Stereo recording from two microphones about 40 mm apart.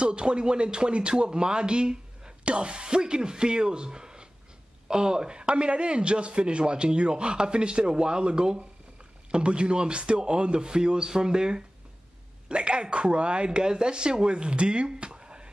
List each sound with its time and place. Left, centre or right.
0.0 s speech: right